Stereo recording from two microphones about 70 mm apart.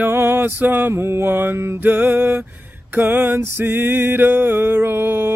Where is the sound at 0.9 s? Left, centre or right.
Right.